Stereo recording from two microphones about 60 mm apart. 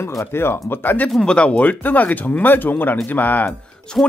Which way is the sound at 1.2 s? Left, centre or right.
Centre.